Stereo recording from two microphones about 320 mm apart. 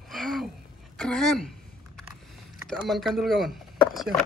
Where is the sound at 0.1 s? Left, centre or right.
Centre.